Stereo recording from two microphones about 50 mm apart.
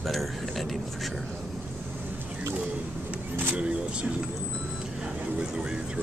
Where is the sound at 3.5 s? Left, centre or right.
Right.